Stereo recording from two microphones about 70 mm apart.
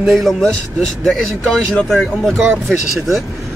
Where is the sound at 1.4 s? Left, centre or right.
Centre.